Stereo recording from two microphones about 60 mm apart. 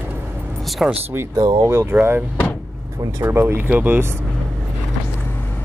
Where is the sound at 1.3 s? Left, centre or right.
Right.